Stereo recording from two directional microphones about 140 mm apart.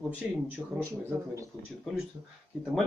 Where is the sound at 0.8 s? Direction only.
20° right (ahead or behind).